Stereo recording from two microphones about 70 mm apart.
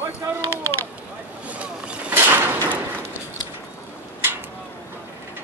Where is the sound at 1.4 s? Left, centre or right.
Centre.